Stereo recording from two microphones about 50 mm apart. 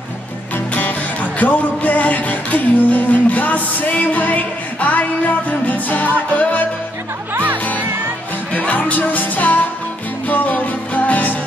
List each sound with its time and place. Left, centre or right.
1.4 s music: left
8.5 s music: left